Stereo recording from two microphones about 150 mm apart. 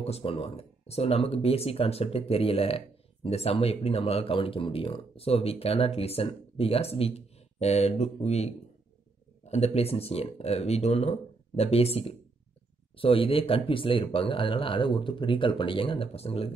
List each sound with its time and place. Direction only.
0.0 s speech: 40° left (ahead or behind)